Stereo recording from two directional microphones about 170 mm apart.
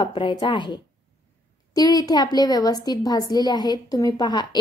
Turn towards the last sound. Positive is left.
turn(degrees=25)  # may be behind; listen again after turning